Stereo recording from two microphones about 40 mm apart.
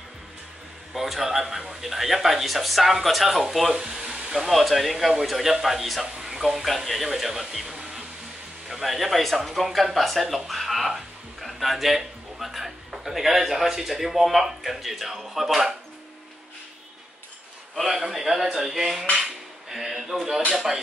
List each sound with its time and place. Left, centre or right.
0.9 s a man's voice: centre
3.7 s a man's voice: centre
17.7 s a man's voice: centre